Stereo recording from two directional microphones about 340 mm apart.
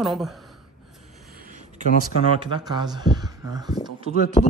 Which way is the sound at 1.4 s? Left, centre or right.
Right.